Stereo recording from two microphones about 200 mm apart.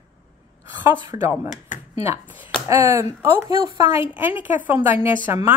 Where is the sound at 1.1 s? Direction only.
10° right (ahead or behind).